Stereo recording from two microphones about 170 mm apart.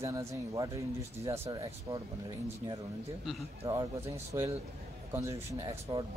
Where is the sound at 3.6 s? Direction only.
20° right (ahead or behind).